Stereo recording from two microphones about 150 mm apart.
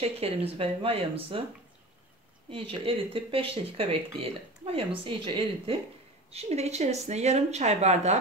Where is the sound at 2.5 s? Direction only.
40° right (ahead or behind).